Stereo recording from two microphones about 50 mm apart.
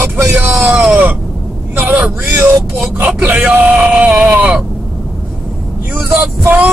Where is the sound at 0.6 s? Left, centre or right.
Centre.